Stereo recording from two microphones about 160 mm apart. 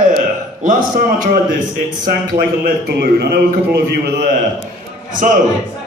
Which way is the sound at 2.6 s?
85° right.